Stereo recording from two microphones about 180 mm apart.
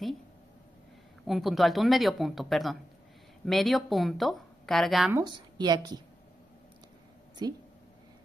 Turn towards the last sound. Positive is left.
turn(degrees=-20)  # may be behind; listen again after turning